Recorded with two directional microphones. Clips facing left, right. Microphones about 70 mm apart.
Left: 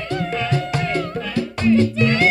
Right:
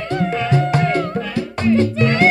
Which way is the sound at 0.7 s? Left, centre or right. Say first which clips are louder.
Right 5 dB; right.